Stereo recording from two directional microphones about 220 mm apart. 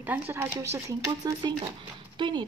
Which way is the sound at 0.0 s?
10° right (ahead or behind).